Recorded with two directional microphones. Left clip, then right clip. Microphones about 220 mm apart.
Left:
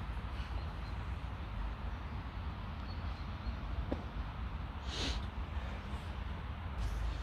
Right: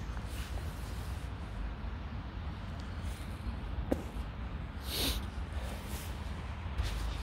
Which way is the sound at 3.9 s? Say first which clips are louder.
Right 7 dB; 40° right (ahead or behind).